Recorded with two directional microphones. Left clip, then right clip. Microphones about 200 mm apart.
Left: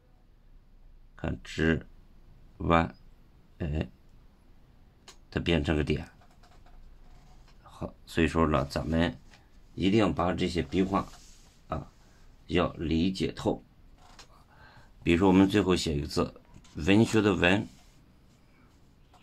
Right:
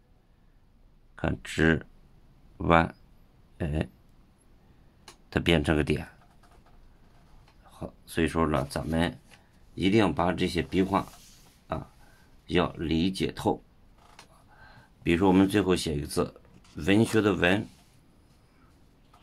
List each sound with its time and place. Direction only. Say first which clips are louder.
1.1 s speech: right 5 dB; 15° right (ahead or behind)
5.3 s speech: right 4 dB; 15° right (ahead or behind)
7.6 s speech: left 1 dB; centre (ahead or behind)
9.8 s speech: right 2 dB; 20° right (ahead or behind)
12.4 s speech: right 1 dB; 20° right (ahead or behind)
14.6 s speech: right 1 dB; 10° right (ahead or behind)